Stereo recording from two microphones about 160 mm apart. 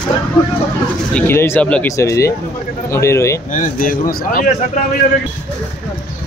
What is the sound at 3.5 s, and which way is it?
Speech, 55° left (ahead or behind).